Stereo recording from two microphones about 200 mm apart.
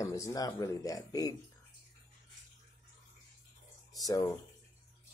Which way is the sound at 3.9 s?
15° left (ahead or behind).